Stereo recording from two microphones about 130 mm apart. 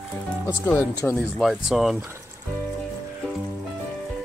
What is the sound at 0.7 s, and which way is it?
Speech, 20° left (ahead or behind).